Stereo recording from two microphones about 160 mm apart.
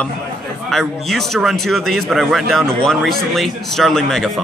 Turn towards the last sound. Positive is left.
turn(degrees=0)  # may be behind; listen again after turning